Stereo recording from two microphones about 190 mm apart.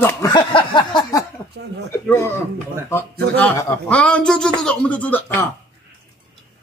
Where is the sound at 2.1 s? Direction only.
10° left (ahead or behind).